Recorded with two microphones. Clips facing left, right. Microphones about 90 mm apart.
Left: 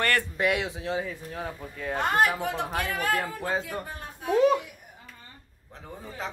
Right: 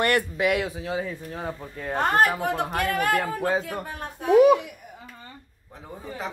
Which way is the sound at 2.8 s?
60° right (ahead or behind).